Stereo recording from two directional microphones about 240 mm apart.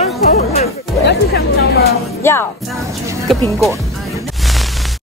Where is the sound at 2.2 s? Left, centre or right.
Centre.